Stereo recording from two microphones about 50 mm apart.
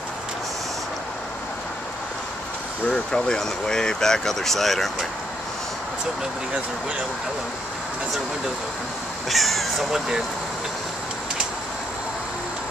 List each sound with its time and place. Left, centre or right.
2.9 s speech: centre
9.3 s speech: centre